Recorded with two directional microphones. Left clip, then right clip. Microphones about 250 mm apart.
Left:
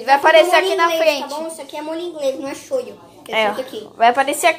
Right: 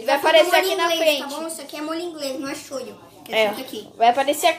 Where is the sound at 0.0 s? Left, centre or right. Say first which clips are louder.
Left 5 dB; centre.